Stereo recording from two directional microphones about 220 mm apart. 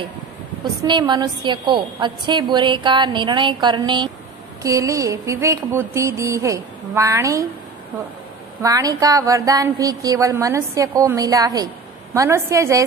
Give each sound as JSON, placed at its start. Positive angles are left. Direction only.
{"t": 0.8, "sound": "a woman's voice", "side_deg": -20}
{"t": 8.6, "sound": "speech", "side_deg": -15}